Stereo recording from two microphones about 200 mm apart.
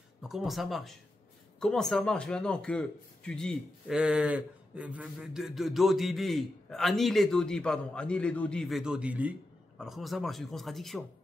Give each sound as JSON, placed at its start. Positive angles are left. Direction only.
{"t": 0.2, "sound": "speech", "side_deg": 0}